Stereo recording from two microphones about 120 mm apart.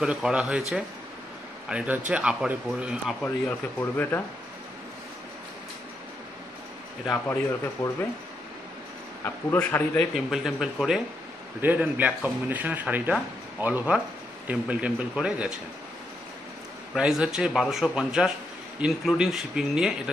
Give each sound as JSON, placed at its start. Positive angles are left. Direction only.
{"t": 0.0, "sound": "speech", "side_deg": -5}
{"t": 3.3, "sound": "speech", "side_deg": 20}
{"t": 7.2, "sound": "speech", "side_deg": 15}
{"t": 9.2, "sound": "speech", "side_deg": 15}
{"t": 10.1, "sound": "speech", "side_deg": -5}
{"t": 11.6, "sound": "speech", "side_deg": -15}
{"t": 16.9, "sound": "speech", "side_deg": -5}